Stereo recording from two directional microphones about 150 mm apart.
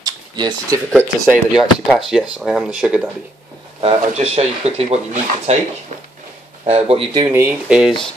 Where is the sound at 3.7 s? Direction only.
45° right (ahead or behind).